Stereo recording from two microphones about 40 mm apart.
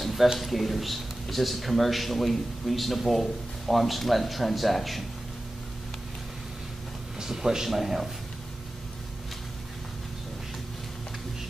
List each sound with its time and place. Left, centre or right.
0.0 s a sound: centre
0.4 s a man's voice: centre
7.2 s speech: centre